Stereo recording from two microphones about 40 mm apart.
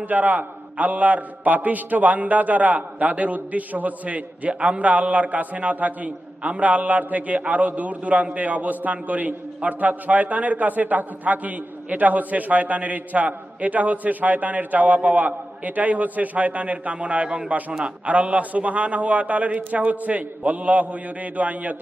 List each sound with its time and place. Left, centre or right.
0.0 s a man's voice: right
6.6 s a man's voice: right